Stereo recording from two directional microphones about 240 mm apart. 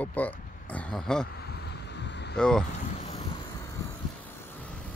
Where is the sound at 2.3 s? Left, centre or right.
Centre.